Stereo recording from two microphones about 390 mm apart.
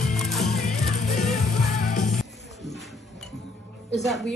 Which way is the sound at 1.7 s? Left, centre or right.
Centre.